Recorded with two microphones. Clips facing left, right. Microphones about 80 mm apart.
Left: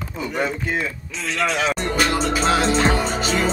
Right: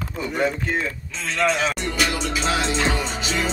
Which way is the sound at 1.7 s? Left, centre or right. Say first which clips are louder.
Left 4 dB; left.